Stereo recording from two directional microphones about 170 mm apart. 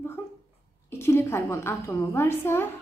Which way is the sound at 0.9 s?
15° left (ahead or behind).